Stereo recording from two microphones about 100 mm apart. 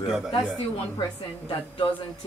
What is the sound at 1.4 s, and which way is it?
Speech, 60° left (ahead or behind).